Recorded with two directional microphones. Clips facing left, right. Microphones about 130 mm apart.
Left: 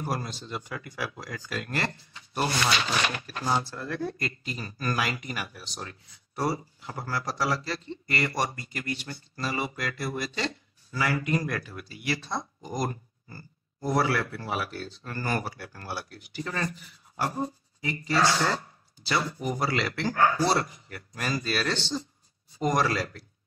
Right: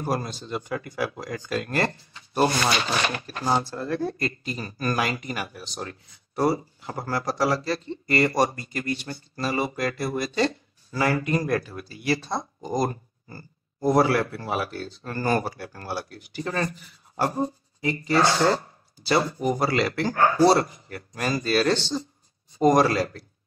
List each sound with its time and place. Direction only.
0.0 s speech: 40° right (ahead or behind)
6.3 s speech: 25° right (ahead or behind)
6.8 s speech: 40° right (ahead or behind)
17.2 s a sound: 35° right (ahead or behind)
18.2 s speech: 30° right (ahead or behind)